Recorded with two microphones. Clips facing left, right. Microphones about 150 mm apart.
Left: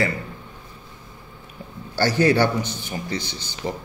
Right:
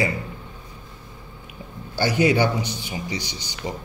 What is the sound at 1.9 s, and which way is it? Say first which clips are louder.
A man's voice: left 1 dB; 15° right (ahead or behind).